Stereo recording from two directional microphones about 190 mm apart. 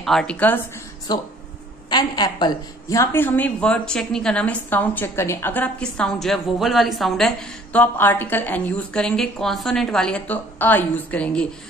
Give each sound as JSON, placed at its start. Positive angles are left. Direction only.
{"t": 0.0, "sound": "a woman's voice", "side_deg": 0}
{"t": 1.1, "sound": "a woman's voice", "side_deg": 20}